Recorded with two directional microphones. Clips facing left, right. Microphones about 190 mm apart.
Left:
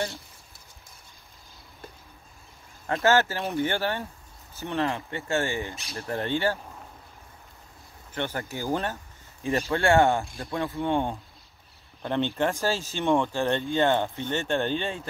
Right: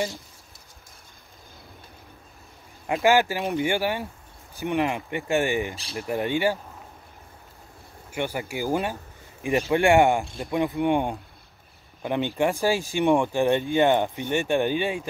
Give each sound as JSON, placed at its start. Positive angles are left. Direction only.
{"t": 2.9, "sound": "speech", "side_deg": -15}
{"t": 8.1, "sound": "speech", "side_deg": -10}